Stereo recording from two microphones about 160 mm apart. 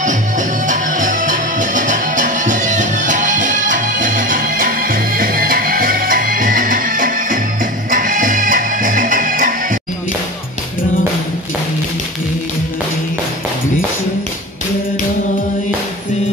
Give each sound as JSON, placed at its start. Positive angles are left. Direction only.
{"t": 0.0, "sound": "music", "side_deg": -50}